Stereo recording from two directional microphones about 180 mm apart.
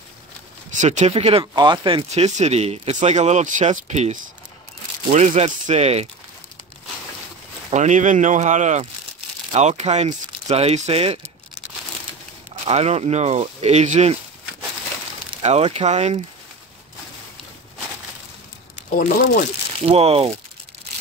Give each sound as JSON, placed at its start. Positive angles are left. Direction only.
{"t": 0.7, "sound": "speech", "side_deg": -40}
{"t": 7.7, "sound": "speech", "side_deg": -40}
{"t": 12.6, "sound": "speech", "side_deg": -35}
{"t": 15.4, "sound": "speech", "side_deg": -35}
{"t": 18.8, "sound": "speech", "side_deg": 50}
{"t": 19.8, "sound": "speech", "side_deg": -35}